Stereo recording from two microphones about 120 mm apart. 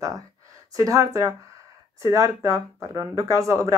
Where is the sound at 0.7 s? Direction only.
30° right (ahead or behind).